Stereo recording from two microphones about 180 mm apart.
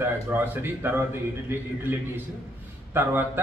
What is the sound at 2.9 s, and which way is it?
Speech, 10° right (ahead or behind).